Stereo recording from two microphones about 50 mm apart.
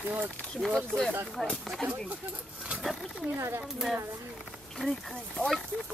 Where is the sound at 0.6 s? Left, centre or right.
Centre.